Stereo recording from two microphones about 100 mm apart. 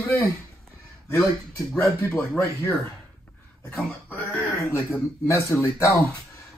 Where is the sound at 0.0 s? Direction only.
25° left (ahead or behind).